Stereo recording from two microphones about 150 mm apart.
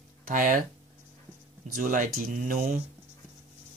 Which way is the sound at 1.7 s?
65° right (ahead or behind).